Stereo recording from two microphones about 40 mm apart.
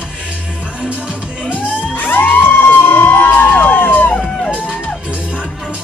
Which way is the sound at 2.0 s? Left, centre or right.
Left.